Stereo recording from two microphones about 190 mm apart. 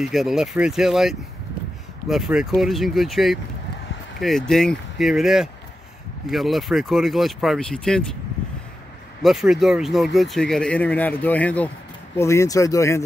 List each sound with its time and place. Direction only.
0.0 s speech: centre (ahead or behind)
9.2 s speech: centre (ahead or behind); by 13.0 s 15° left (ahead or behind)